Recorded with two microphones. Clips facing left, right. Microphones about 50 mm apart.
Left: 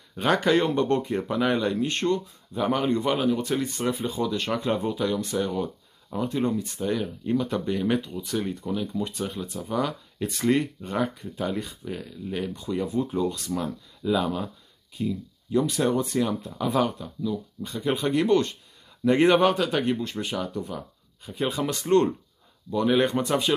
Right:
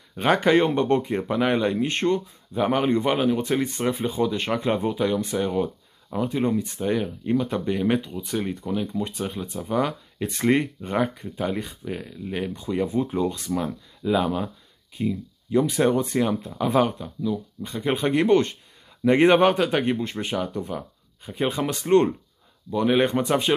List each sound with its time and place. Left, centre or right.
0.1 s speech: right
6.2 s speech: centre
6.5 s speech: right